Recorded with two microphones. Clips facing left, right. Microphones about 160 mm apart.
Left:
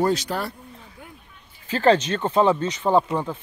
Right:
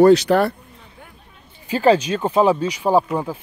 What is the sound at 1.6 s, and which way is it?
Speech, 10° right (ahead or behind).